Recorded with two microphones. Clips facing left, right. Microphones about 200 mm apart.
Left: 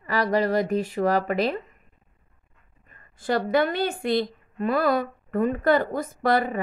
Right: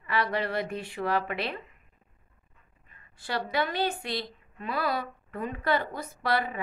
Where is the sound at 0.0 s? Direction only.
40° left (ahead or behind).